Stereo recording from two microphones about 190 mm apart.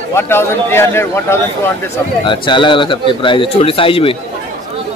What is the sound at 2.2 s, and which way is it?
Speech, 25° left (ahead or behind).